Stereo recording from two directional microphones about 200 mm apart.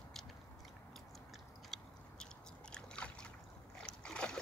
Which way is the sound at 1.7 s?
Centre (ahead or behind).